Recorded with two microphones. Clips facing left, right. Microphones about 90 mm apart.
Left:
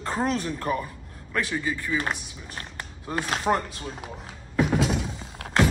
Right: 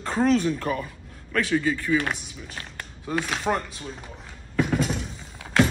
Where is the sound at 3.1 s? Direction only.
40° left (ahead or behind).